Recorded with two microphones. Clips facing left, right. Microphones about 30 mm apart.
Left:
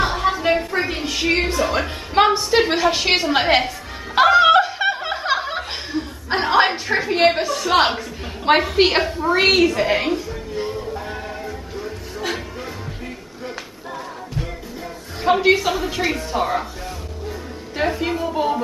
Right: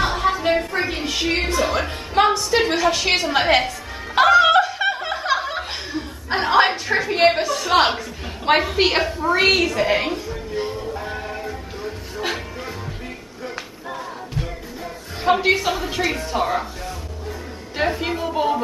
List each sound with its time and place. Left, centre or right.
0.0 s music: centre
1.7 s a woman's voice: centre
2.8 s music: centre
5.6 s a woman's voice: centre
10.5 s music: centre
15.2 s a woman's voice: centre
17.7 s a woman's voice: centre